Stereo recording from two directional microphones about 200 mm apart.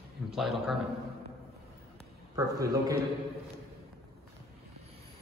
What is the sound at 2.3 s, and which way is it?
Speech, 15° right (ahead or behind).